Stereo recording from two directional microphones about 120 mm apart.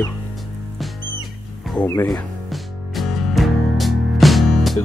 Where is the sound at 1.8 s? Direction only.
30° left (ahead or behind).